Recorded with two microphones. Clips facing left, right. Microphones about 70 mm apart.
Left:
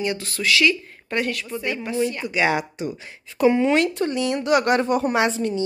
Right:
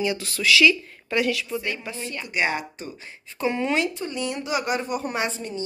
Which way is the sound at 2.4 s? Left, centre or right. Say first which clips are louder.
Left 5 dB; left.